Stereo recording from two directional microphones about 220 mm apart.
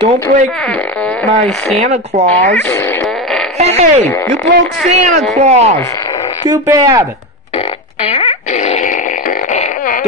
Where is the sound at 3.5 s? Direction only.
30° right (ahead or behind).